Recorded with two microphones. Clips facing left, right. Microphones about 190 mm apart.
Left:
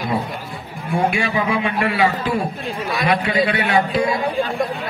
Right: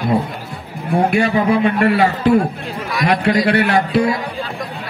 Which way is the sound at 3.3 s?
70° right (ahead or behind).